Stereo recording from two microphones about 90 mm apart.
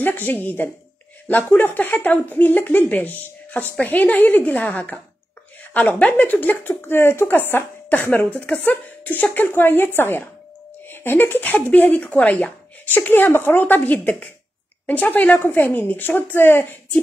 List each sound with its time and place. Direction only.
0.0 s speech: 20° left (ahead or behind)